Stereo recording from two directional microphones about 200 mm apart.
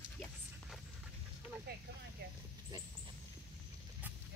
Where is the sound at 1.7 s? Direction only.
50° right (ahead or behind).